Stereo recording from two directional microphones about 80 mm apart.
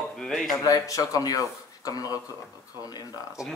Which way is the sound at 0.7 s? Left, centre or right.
Left.